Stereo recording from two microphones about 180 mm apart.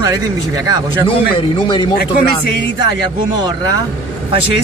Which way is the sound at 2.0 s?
60° left (ahead or behind).